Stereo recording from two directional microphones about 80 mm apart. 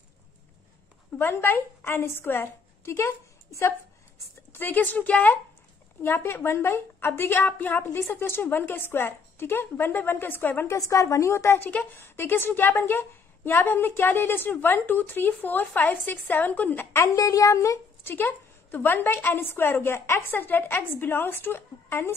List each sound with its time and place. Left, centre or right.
1.1 s a woman's voice: left
10.9 s a woman's voice: left
17.1 s a woman's voice: left
18.1 s a woman's voice: left